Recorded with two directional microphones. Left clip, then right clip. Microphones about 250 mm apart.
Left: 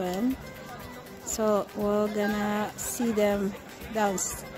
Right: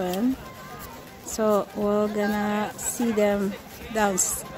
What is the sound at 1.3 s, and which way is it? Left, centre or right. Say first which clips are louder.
Speech: right 3 dB; centre.